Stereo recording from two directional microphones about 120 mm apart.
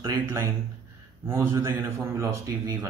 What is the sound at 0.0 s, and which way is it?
A man's voice, 25° right (ahead or behind).